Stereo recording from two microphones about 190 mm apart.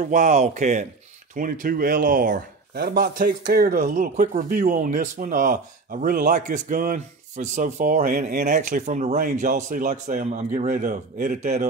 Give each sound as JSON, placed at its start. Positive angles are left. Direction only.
{"t": 0.0, "sound": "speech", "side_deg": -40}